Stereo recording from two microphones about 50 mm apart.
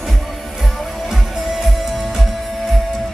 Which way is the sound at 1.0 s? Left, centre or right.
Centre.